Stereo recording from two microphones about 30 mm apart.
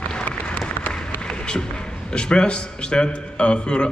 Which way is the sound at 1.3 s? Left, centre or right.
Left.